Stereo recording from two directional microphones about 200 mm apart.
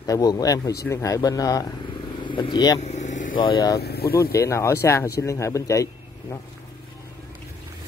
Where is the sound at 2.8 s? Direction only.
35° left (ahead or behind).